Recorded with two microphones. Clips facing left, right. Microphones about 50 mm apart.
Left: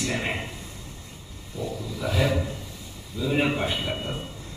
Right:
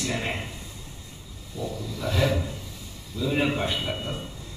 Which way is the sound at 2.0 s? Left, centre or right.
Centre.